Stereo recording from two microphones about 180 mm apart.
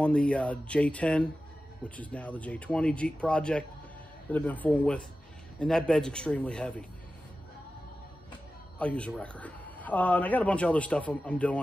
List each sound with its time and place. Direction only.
0.0 s a man's voice: 5° left (ahead or behind)
8.7 s a man's voice: 5° left (ahead or behind)